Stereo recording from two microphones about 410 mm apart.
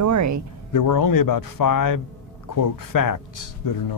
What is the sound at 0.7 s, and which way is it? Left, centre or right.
Speech, left.